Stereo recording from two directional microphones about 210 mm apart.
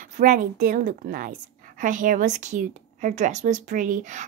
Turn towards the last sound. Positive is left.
turn(degrees=-40)  # may be behind; listen again after turning